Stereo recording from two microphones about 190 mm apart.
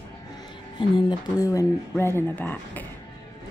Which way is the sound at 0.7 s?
25° left (ahead or behind).